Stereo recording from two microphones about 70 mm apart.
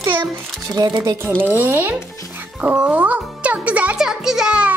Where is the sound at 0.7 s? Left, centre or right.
Right.